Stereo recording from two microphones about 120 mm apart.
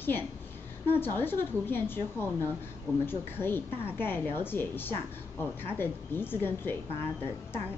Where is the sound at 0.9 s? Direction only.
20° left (ahead or behind).